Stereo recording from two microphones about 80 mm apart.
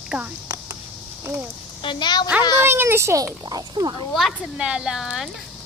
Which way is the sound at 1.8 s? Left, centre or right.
Left.